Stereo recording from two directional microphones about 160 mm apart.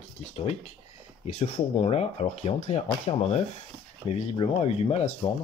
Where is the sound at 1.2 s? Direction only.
45° left (ahead or behind).